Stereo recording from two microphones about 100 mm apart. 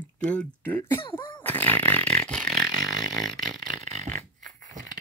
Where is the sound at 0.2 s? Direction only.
15° left (ahead or behind).